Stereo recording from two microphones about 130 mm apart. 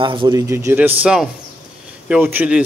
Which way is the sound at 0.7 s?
10° right (ahead or behind).